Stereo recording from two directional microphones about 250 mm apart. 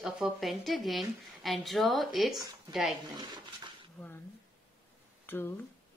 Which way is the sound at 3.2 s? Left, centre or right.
Centre.